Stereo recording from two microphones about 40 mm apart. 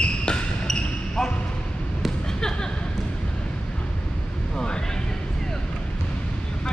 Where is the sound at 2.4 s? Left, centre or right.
Centre.